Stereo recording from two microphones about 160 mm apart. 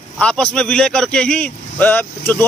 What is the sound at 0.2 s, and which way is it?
Speech, 5° left (ahead or behind).